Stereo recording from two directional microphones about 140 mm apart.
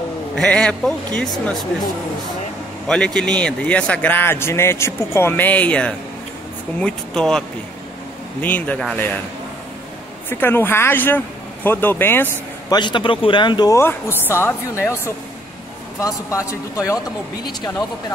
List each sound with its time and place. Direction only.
0.4 s speech: 5° left (ahead or behind)
2.9 s a man's voice: 5° left (ahead or behind)
10.3 s a man's voice: 15° left (ahead or behind)
12.6 s speech: 30° left (ahead or behind)
13.7 s speech: 15° left (ahead or behind)
16.0 s speech: 20° left (ahead or behind)